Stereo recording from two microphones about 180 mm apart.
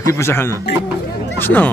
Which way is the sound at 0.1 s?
15° left (ahead or behind).